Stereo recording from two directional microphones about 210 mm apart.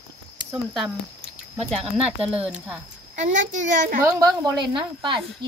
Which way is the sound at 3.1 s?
35° right (ahead or behind).